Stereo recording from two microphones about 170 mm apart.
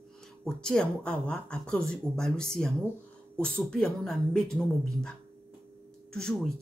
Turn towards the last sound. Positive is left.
turn(degrees=5)  # may be behind; listen again after turning